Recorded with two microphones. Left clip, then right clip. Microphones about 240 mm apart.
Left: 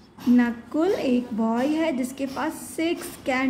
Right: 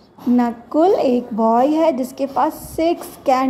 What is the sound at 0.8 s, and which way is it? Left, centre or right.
A woman's voice, centre.